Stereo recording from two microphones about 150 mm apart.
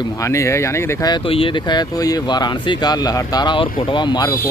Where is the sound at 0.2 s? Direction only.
20° left (ahead or behind).